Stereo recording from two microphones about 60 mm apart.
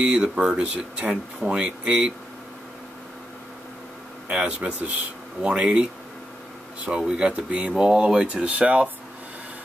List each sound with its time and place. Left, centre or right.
0.0 s speech: right
4.3 s speech: centre
7.1 s speech: centre
8.3 s speech: right